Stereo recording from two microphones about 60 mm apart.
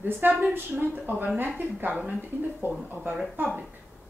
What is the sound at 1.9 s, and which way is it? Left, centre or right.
Speech, centre.